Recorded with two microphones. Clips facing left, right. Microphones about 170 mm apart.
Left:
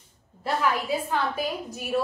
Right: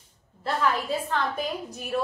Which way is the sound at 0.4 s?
10° left (ahead or behind).